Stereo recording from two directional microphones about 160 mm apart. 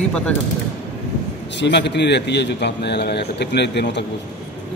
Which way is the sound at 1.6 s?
90° left.